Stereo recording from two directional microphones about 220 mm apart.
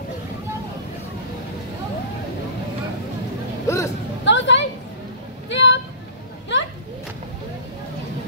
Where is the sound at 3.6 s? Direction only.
15° left (ahead or behind).